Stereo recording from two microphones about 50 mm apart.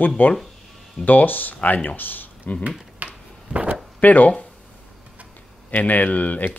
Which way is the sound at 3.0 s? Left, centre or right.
Right.